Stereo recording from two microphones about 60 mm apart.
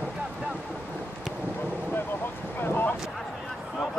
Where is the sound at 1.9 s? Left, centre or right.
Left.